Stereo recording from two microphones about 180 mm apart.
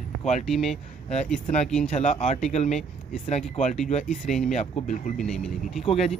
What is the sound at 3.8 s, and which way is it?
Speech, 45° left (ahead or behind).